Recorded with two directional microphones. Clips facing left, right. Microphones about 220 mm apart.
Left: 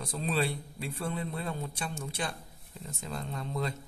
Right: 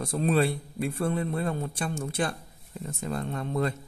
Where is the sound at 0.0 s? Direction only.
55° right (ahead or behind).